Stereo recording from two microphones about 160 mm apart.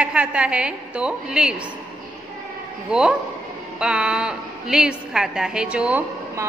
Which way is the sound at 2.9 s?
5° right (ahead or behind).